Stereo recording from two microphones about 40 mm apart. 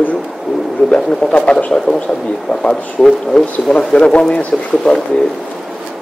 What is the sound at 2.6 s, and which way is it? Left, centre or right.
A man's voice, centre.